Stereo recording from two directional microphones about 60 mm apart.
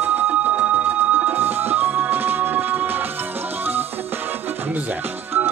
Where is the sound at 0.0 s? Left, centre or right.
Right.